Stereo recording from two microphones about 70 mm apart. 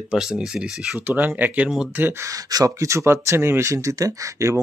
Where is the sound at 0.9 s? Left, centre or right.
Right.